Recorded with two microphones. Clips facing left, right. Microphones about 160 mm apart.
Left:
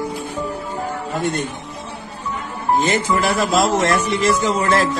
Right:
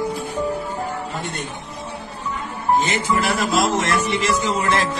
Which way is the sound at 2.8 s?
40° left (ahead or behind).